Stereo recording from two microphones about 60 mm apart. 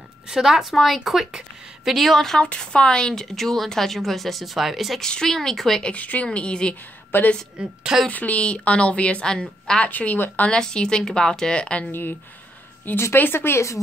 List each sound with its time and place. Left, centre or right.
0.3 s a woman's voice: centre
2.4 s a woman's voice: centre
5.0 s speech: centre
5.9 s speech: left
7.1 s speech: left
7.5 s a woman's voice: centre
8.1 s a woman's voice: left
9.8 s speech: left
10.4 s speech: centre
11.9 s speech: left